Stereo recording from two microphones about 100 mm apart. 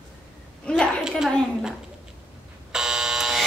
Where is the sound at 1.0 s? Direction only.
5° right (ahead or behind).